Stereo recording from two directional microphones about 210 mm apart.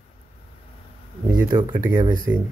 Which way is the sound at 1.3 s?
20° right (ahead or behind).